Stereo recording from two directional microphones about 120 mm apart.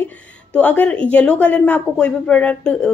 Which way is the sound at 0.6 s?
15° left (ahead or behind).